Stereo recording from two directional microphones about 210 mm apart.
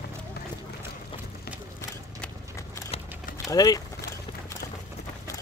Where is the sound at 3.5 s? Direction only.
15° left (ahead or behind).